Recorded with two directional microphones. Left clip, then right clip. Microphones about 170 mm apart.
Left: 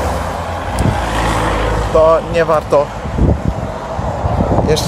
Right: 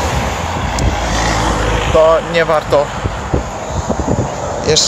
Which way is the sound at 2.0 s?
25° right (ahead or behind).